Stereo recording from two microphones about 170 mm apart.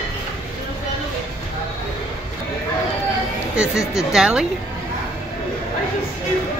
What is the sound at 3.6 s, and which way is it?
Speech, 5° right (ahead or behind).